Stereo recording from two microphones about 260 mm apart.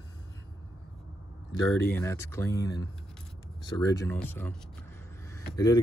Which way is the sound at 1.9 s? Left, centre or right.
Centre.